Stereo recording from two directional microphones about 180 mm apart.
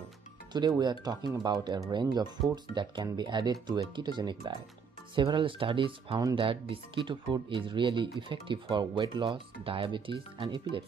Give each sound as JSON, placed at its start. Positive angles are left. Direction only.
{"t": 0.5, "sound": "speech", "side_deg": -25}